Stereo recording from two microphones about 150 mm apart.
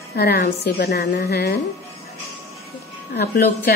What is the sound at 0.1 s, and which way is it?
A woman's voice, 90° left.